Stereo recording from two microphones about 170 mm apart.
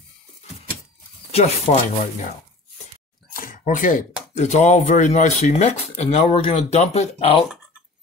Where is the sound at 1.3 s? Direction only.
40° left (ahead or behind).